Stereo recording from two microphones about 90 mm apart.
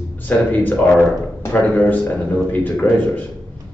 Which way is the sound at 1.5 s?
20° left (ahead or behind).